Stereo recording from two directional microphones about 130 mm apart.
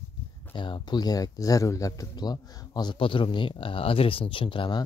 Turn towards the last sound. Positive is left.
turn(degrees=35)  # may be behind; listen again after turning